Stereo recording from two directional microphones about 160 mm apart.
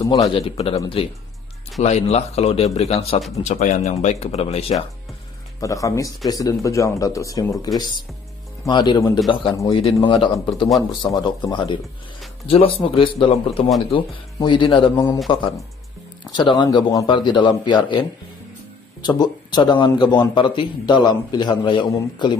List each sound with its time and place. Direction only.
0.2 s speech: 35° left (ahead or behind)
5.6 s a man's voice: 20° left (ahead or behind)
13.7 s speech: centre (ahead or behind)
13.9 s speech: 30° left (ahead or behind)
16.3 s a man's voice: 30° left (ahead or behind)